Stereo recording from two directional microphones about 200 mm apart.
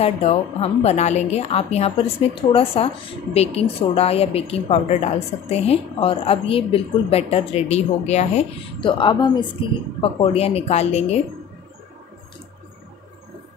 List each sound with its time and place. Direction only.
0.0 s a woman's voice: 30° left (ahead or behind)